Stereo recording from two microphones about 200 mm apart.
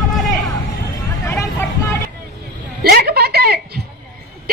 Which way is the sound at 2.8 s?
50° right (ahead or behind).